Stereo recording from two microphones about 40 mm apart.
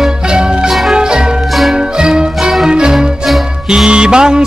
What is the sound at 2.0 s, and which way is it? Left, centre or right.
Music, right.